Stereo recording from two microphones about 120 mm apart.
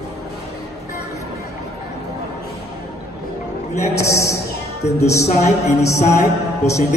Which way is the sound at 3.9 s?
25° left (ahead or behind).